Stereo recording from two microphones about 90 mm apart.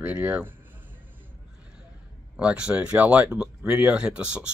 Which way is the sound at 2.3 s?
10° right (ahead or behind).